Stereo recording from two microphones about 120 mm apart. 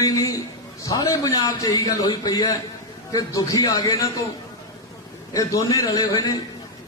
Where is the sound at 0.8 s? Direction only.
30° left (ahead or behind).